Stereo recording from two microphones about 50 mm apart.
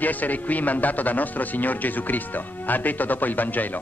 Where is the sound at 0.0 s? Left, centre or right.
Left.